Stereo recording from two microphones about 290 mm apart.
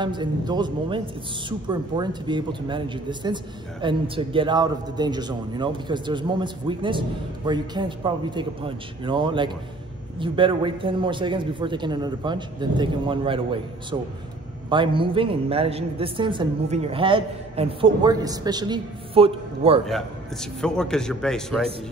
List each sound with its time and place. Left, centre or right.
0.0 s a man's voice: centre
19.9 s a man's voice: centre